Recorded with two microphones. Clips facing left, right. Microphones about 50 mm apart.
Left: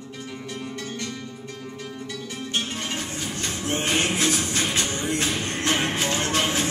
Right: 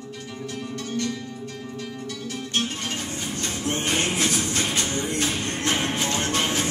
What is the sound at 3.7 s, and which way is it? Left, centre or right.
Music, left.